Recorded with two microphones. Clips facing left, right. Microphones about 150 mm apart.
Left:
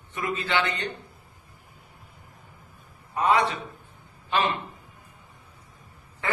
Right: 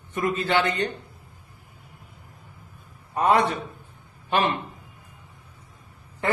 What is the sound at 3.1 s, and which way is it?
A man's voice, 50° right (ahead or behind).